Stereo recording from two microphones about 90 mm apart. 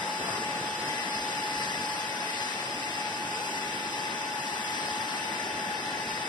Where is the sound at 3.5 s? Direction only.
55° left (ahead or behind).